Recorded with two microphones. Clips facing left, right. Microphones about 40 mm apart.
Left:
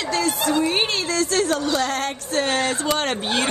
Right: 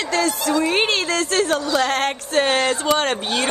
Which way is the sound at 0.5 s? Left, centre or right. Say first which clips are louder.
Right 3 dB; right.